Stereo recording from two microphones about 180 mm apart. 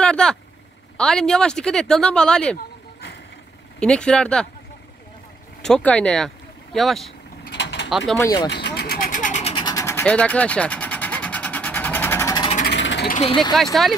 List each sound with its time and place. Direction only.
0.0 s vehicle: 5° left (ahead or behind)
0.9 s speech: 5° left (ahead or behind)
3.8 s speech: 5° left (ahead or behind)
5.6 s speech: 5° left (ahead or behind)
7.4 s mechanisms: 75° left (ahead or behind)
8.2 s speech: 20° left (ahead or behind)
8.5 s vehicle: 70° left (ahead or behind); by 9.5 s 45° left (ahead or behind)
9.5 s vehicle: 25° left (ahead or behind)
12.6 s a sound: 80° left
13.1 s speech: 30° left (ahead or behind)